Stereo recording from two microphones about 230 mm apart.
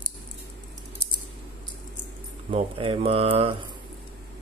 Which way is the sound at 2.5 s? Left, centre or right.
Right.